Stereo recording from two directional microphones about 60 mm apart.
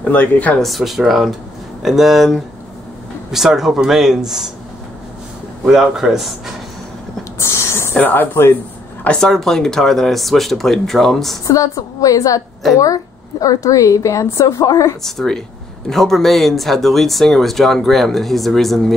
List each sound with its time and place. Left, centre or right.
0.0 s speech: left
0.6 s speech: centre
5.7 s speech: centre
7.3 s speech: left
7.9 s speech: left
9.0 s speech: centre
11.4 s a woman's voice: left
15.0 s speech: centre